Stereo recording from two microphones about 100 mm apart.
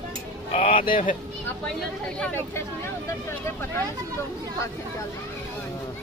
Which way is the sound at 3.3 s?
25° left (ahead or behind).